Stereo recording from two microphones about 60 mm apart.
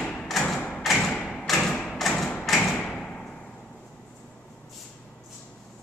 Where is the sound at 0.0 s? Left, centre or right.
Centre.